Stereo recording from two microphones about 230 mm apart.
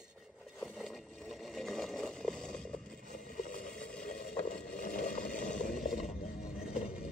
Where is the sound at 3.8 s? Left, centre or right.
Centre.